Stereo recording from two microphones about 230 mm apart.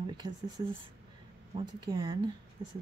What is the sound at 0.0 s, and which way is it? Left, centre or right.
Speech, centre.